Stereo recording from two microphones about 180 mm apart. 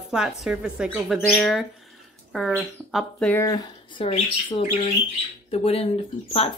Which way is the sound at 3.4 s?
20° left (ahead or behind).